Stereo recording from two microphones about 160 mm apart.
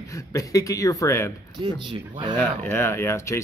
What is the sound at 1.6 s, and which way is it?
Speech, 30° right (ahead or behind).